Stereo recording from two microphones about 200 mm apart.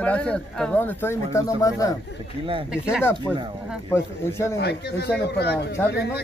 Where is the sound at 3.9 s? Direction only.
15° left (ahead or behind).